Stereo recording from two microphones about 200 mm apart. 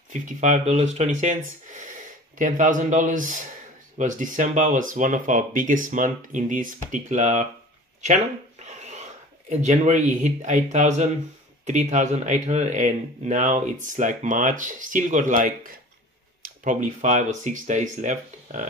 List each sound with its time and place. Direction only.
0.1 s speech: 35° right (ahead or behind)
8.0 s a sound: 35° right (ahead or behind)
9.5 s speech: 35° right (ahead or behind)